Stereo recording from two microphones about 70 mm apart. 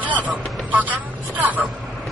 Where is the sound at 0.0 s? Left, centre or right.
Right.